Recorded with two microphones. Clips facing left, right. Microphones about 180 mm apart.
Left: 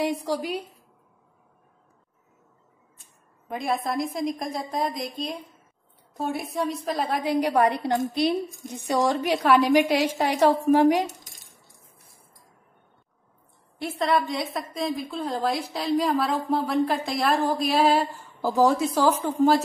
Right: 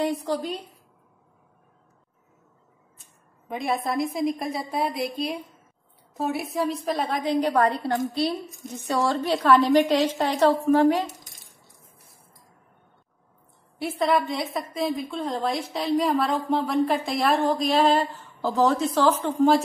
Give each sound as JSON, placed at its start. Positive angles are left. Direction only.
{"t": 0.0, "sound": "a woman's voice", "side_deg": 10}
{"t": 3.4, "sound": "a woman's voice", "side_deg": 0}
{"t": 13.7, "sound": "a woman's voice", "side_deg": -5}